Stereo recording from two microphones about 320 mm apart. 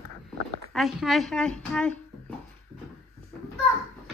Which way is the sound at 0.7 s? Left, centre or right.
Centre.